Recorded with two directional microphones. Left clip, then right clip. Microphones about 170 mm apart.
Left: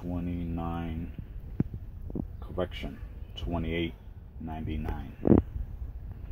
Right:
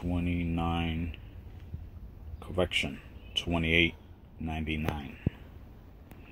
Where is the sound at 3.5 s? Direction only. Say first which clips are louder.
Right 6 dB; 20° right (ahead or behind).